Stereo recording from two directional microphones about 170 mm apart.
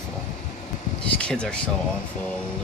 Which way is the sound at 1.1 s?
5° left (ahead or behind).